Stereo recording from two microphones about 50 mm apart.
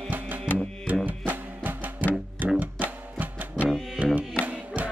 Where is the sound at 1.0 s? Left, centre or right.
Right.